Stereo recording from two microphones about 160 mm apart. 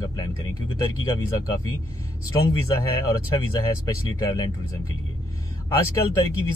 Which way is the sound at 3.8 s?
25° left (ahead or behind).